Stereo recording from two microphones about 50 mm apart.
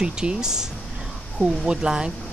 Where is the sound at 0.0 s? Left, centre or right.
Centre.